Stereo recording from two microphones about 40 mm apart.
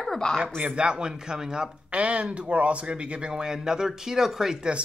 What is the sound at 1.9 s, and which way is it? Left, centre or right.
Speech, right.